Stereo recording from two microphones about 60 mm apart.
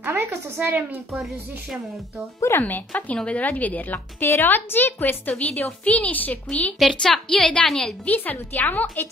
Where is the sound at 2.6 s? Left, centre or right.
Left.